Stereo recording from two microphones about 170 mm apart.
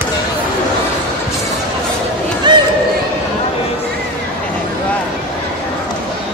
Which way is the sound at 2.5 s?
25° right (ahead or behind).